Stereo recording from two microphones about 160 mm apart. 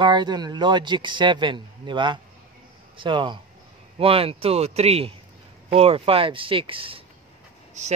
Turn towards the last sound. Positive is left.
turn(degrees=-45)  # may be behind; listen again after turning